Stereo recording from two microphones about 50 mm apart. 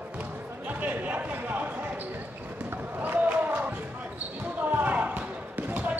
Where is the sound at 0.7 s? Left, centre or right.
Right.